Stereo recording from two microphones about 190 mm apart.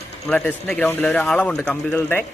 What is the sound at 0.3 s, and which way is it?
Speech, 5° left (ahead or behind).